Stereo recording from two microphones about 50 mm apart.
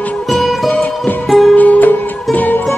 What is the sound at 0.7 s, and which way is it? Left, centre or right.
Music, left.